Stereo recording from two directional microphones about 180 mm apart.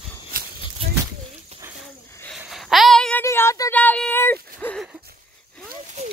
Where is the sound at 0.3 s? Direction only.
50° right (ahead or behind).